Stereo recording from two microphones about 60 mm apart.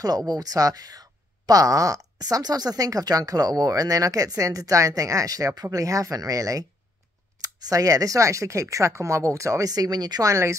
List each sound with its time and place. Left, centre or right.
0.0 s speech: right